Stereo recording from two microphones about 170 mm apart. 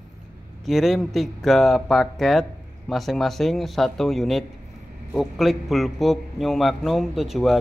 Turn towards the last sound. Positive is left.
turn(degrees=0)  # may be behind; listen again after turning